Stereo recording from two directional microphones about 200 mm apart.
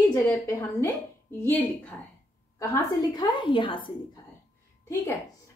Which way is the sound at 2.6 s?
15° left (ahead or behind).